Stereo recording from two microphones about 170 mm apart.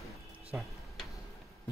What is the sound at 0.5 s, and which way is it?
Speech, 5° right (ahead or behind).